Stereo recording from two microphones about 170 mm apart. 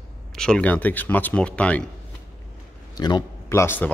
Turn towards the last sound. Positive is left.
turn(degrees=15)  # may be behind; listen again after turning